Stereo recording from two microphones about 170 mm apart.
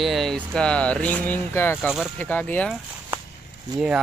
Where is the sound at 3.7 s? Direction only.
5° right (ahead or behind).